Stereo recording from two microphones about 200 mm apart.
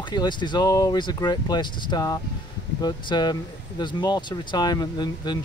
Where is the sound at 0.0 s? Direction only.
20° left (ahead or behind).